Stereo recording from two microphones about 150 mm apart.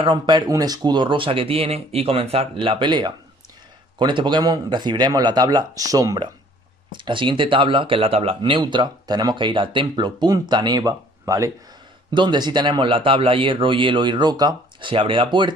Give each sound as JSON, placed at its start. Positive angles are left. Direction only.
{"t": 0.0, "sound": "speech", "side_deg": -30}